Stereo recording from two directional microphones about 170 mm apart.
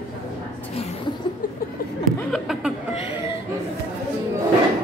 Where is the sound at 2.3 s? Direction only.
Centre (ahead or behind).